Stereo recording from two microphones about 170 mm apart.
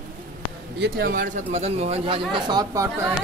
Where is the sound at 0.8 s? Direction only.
60° right (ahead or behind).